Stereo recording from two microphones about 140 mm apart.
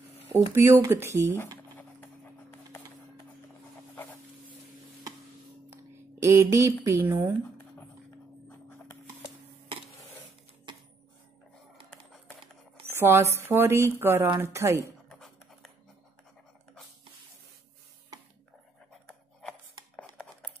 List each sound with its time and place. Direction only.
0.3 s speech: 15° right (ahead or behind)
5.7 s speech: 20° right (ahead or behind)
8.5 s music: 15° left (ahead or behind)
12.8 s speech: 15° right (ahead or behind)
15.0 s a sound: 5° left (ahead or behind)